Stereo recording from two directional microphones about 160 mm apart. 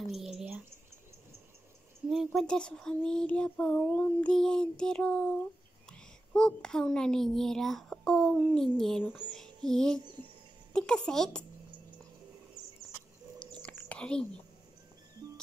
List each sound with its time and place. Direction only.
0.0 s a sound: centre (ahead or behind)
2.0 s a child's voice: centre (ahead or behind)
9.9 s speech: 25° right (ahead or behind)
10.7 s a woman's voice: 5° left (ahead or behind)
13.6 s whispering: 5° left (ahead or behind)